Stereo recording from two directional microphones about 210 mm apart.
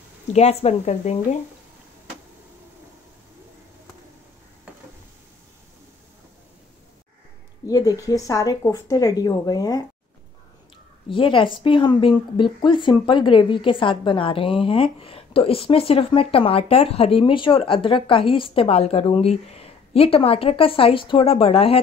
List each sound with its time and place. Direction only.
0.3 s a woman's voice: 30° left (ahead or behind)
7.6 s speech: 15° left (ahead or behind)
11.1 s a woman's voice: 25° left (ahead or behind)